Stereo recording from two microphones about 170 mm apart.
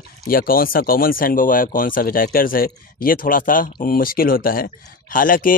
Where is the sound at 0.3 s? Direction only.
55° left (ahead or behind).